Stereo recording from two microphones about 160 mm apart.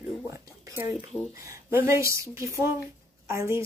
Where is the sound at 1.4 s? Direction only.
15° right (ahead or behind).